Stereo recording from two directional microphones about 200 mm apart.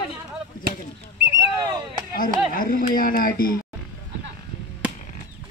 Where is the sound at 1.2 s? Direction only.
15° right (ahead or behind).